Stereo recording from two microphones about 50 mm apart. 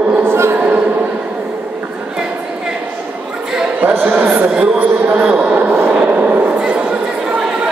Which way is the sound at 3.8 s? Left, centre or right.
Right.